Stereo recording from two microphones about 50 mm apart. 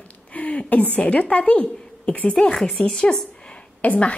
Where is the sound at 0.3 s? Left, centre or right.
Left.